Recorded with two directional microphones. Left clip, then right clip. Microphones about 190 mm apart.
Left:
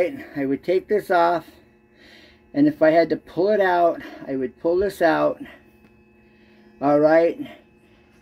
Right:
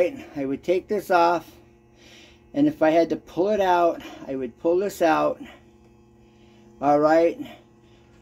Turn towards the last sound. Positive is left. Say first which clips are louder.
# left 2 dB
turn(degrees=15)  # may be behind; listen again after turning